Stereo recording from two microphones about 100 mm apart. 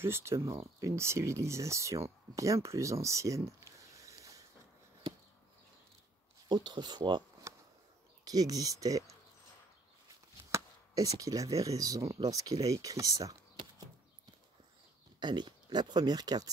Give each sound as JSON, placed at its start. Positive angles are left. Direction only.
{"t": 0.0, "sound": "speech", "side_deg": -25}
{"t": 6.5, "sound": "speech", "side_deg": -50}
{"t": 7.5, "sound": "a sound", "side_deg": -30}
{"t": 8.3, "sound": "speech", "side_deg": -40}
{"t": 10.5, "sound": "speech", "side_deg": -35}
{"t": 15.1, "sound": "speech", "side_deg": -50}